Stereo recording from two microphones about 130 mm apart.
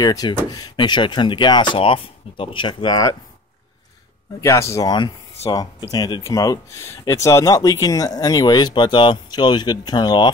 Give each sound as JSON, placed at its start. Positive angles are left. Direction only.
{"t": 0.0, "sound": "speech", "side_deg": 30}
{"t": 4.4, "sound": "speech", "side_deg": 25}